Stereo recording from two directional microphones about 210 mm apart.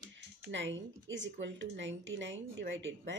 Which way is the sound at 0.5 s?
60° right (ahead or behind).